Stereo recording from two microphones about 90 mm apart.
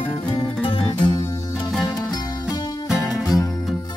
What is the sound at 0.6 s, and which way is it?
Music, 70° left (ahead or behind).